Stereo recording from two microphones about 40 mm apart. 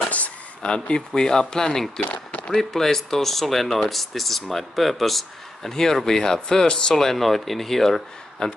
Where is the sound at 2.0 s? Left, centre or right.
Left.